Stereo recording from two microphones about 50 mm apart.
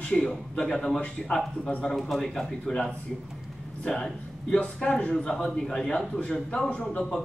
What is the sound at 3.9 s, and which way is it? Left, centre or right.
A woman's voice, centre.